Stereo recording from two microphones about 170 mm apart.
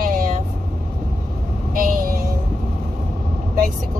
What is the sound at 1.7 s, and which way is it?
Speech, 55° right (ahead or behind).